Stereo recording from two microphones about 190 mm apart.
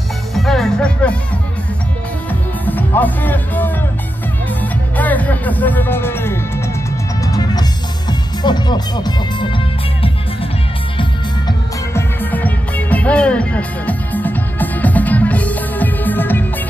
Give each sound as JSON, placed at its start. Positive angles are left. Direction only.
{"t": 0.3, "sound": "music", "side_deg": 0}
{"t": 2.6, "sound": "speech", "side_deg": 10}
{"t": 4.9, "sound": "speech", "side_deg": 10}
{"t": 7.2, "sound": "music", "side_deg": 20}
{"t": 8.1, "sound": "speech", "side_deg": 20}
{"t": 11.9, "sound": "music", "side_deg": 10}